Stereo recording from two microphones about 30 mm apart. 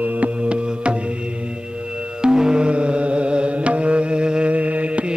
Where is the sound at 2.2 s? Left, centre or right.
Right.